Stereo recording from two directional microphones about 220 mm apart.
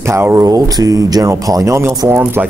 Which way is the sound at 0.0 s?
10° right (ahead or behind).